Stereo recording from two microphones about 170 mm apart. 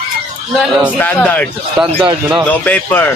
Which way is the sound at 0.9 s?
10° left (ahead or behind).